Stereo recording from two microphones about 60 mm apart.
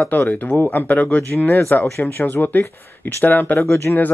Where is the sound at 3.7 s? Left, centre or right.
Left.